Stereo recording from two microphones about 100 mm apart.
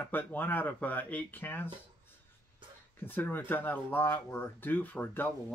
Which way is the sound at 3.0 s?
20° left (ahead or behind).